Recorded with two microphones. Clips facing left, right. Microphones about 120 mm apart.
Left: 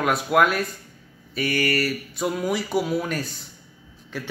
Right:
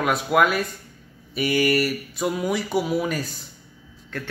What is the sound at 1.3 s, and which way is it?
Speech, 15° right (ahead or behind).